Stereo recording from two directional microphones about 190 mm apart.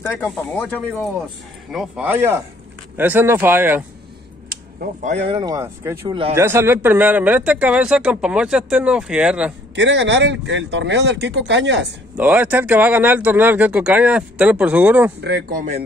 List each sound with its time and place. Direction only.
0.3 s speech: 5° left (ahead or behind)
1.7 s speech: 5° right (ahead or behind)
4.5 s a sound: 50° right (ahead or behind)
5.1 s speech: 30° right (ahead or behind); by 9.5 s 5° right (ahead or behind)
9.8 s speech: 70° right (ahead or behind)
12.2 s speech: 10° right (ahead or behind)
15.1 s a man's voice: 60° right (ahead or behind)